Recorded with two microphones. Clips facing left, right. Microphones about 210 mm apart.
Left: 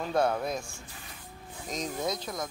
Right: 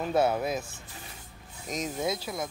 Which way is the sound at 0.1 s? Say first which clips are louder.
Right 2 dB; 5° right (ahead or behind).